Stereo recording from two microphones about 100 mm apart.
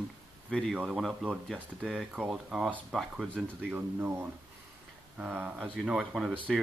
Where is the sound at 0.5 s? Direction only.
10° left (ahead or behind).